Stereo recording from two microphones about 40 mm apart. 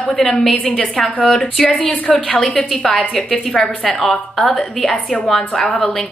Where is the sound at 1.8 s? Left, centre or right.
Left.